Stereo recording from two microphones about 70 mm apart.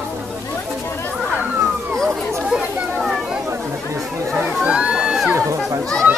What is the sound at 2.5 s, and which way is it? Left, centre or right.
Chatter, centre.